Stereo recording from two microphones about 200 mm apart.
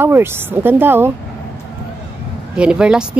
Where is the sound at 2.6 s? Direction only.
5° right (ahead or behind).